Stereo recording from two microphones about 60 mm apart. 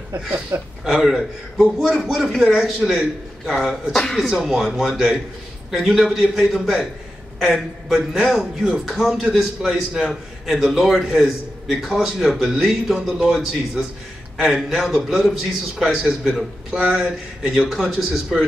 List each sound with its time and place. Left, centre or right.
0.5 s speech: right
0.8 s a man's voice: centre
3.9 s speech: centre
4.2 s a man's voice: centre